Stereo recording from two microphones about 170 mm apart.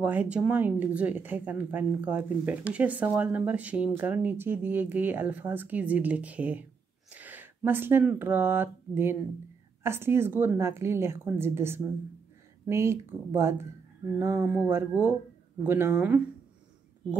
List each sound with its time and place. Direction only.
0.0 s speech: 10° right (ahead or behind)